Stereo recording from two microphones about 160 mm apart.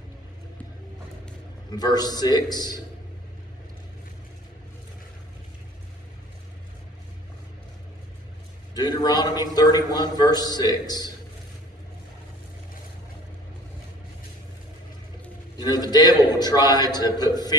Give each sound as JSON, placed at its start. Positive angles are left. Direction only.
{"t": 1.7, "sound": "a man's voice", "side_deg": 25}
{"t": 8.7, "sound": "a man's voice", "side_deg": 25}
{"t": 15.5, "sound": "a man's voice", "side_deg": 25}